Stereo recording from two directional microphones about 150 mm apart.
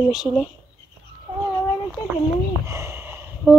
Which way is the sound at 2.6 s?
20° right (ahead or behind).